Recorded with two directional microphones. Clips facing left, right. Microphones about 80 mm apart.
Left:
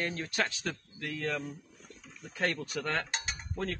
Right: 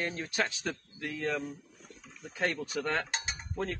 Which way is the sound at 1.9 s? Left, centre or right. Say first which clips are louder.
Even; right.